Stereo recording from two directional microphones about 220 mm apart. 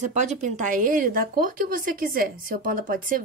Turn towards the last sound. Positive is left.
turn(degrees=-40)  # may be behind; listen again after turning